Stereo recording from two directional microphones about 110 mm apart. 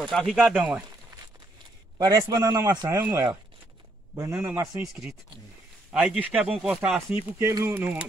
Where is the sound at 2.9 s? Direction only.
20° right (ahead or behind); by 7.0 s 5° right (ahead or behind).